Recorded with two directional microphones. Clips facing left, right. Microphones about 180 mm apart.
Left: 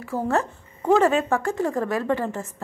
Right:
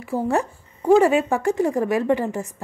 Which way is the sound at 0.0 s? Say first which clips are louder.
Right 2 dB; 15° right (ahead or behind).